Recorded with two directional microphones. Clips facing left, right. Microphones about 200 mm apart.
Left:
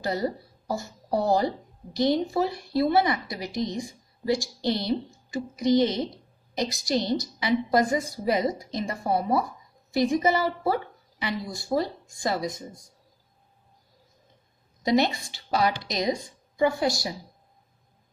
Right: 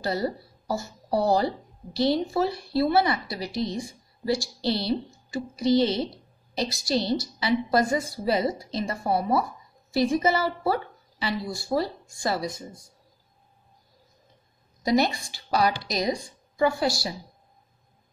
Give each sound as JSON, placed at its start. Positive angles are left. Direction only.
{"t": 0.0, "sound": "a woman's voice", "side_deg": 20}
{"t": 14.8, "sound": "a woman's voice", "side_deg": 20}